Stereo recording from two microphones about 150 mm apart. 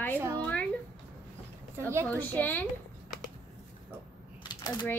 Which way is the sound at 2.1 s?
10° left (ahead or behind).